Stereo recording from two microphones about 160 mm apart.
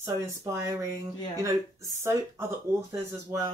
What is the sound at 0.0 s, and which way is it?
Speech, 20° right (ahead or behind).